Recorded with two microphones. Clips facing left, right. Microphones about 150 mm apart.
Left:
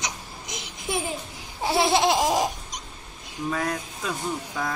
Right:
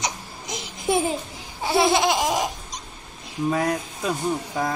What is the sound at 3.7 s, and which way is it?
Speech, 30° right (ahead or behind).